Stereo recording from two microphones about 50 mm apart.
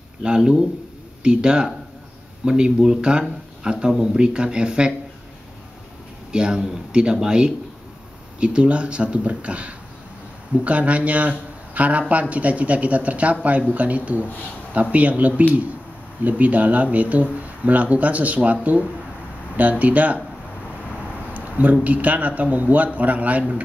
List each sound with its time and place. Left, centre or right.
0.2 s a man's voice: centre
6.3 s a man's voice: centre
21.3 s a sound: right
21.8 s a man's voice: right